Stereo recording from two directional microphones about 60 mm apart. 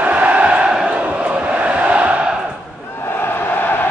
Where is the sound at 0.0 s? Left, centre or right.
Right.